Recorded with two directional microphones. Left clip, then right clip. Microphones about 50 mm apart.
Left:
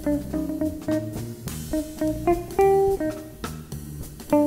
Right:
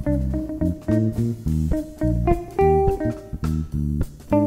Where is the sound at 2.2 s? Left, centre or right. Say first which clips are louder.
Even; centre.